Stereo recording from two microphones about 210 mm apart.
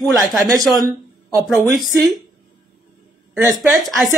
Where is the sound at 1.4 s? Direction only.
10° right (ahead or behind).